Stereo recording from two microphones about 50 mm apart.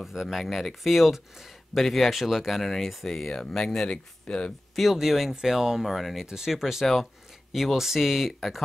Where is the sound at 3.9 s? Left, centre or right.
Centre.